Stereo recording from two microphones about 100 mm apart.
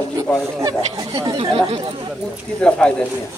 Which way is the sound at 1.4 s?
65° right (ahead or behind).